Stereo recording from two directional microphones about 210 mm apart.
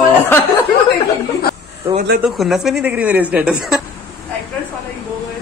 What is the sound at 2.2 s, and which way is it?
A woman's voice, centre (ahead or behind).